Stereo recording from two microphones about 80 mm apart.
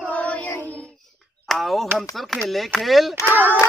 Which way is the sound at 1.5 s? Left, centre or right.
Centre.